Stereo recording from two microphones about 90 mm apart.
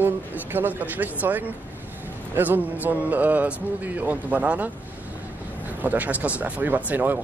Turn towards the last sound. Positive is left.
turn(degrees=-20)  # may be behind; listen again after turning